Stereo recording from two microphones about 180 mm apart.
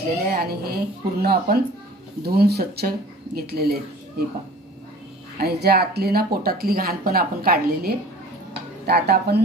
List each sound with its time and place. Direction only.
0.1 s speech: 60° right (ahead or behind)
5.4 s speech: 60° right (ahead or behind)